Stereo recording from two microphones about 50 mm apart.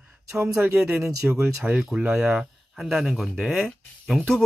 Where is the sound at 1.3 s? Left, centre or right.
Right.